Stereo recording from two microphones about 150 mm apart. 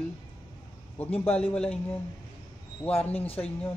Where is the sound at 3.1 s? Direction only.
40° left (ahead or behind).